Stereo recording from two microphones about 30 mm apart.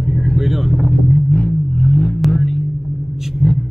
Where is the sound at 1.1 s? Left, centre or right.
Left.